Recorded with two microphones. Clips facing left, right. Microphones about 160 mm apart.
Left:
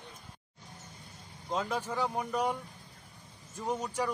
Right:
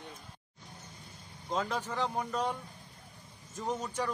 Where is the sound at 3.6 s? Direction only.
10° left (ahead or behind).